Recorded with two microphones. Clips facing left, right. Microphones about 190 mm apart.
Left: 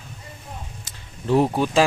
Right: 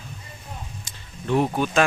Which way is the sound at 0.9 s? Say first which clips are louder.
Even; 5° left (ahead or behind).